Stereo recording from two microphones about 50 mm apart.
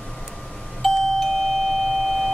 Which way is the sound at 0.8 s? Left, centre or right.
Centre.